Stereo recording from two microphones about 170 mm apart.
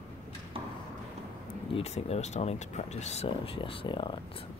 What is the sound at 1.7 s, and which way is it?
Speech, 40° left (ahead or behind).